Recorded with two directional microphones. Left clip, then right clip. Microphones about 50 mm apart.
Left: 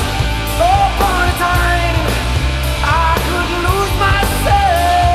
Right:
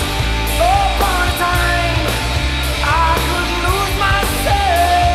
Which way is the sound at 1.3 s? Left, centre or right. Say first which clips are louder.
Left 1 dB; right.